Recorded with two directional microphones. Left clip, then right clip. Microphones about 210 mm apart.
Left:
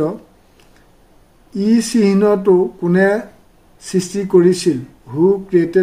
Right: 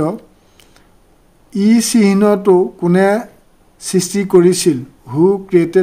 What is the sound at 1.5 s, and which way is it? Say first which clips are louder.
Speech: right 3 dB; 30° right (ahead or behind).